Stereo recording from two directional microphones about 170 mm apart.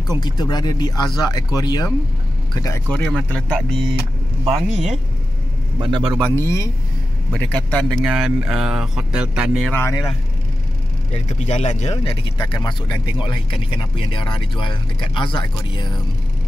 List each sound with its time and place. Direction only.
0.0 s speech: 25° left (ahead or behind)
2.9 s speech: 5° left (ahead or behind)
4.5 s speech: 40° right (ahead or behind)
5.8 s a man's voice: 30° right (ahead or behind)
6.2 s speech: 15° left (ahead or behind); by 9.7 s 5° right (ahead or behind)
9.7 s speech: 15° left (ahead or behind)
11.1 s speech: 40° left (ahead or behind)